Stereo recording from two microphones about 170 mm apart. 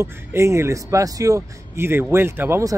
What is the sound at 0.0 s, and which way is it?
Speech, 15° right (ahead or behind).